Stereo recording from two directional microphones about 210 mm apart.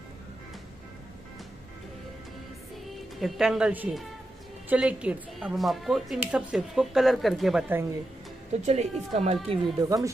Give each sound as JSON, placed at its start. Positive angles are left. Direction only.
{"t": 3.2, "sound": "speech", "side_deg": 0}
{"t": 8.5, "sound": "speech", "side_deg": -35}
{"t": 9.8, "sound": "speech", "side_deg": -15}